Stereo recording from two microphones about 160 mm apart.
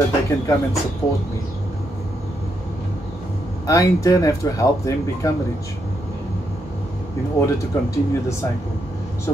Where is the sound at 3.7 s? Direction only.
20° left (ahead or behind).